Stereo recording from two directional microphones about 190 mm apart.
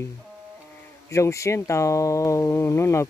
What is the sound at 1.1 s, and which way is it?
Speech, 15° left (ahead or behind).